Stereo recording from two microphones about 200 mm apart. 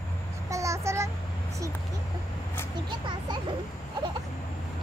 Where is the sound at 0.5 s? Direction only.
15° right (ahead or behind).